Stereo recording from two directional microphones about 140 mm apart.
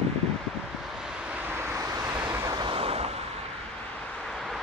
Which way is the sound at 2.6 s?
40° right (ahead or behind).